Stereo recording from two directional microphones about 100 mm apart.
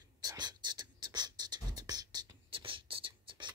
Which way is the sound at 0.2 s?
45° right (ahead or behind).